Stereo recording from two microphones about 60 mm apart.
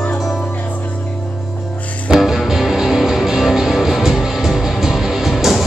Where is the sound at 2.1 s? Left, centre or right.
Centre.